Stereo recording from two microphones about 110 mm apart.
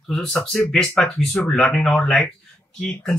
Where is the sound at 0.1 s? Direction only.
5° left (ahead or behind).